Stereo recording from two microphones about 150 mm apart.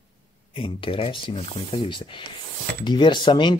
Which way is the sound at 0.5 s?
35° left (ahead or behind).